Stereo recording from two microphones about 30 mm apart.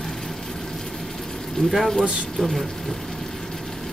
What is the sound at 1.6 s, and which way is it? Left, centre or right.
Speech, left.